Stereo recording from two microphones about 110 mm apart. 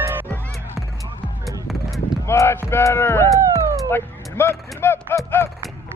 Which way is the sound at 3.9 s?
20° left (ahead or behind).